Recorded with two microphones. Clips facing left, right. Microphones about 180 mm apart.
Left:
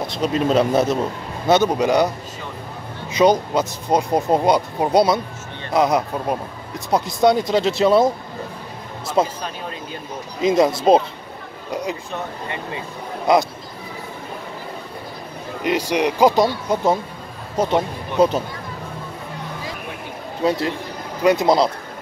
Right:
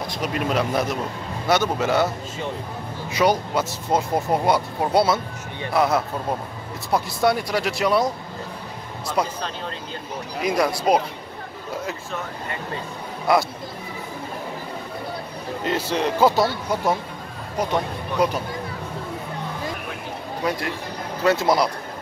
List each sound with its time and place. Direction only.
0.0 s speech: 25° left (ahead or behind)
3.1 s speech: 20° left (ahead or behind)
9.2 s speech: 25° left (ahead or behind)
10.4 s speech: 25° left (ahead or behind)
15.6 s speech: 15° left (ahead or behind)
20.4 s speech: 25° left (ahead or behind)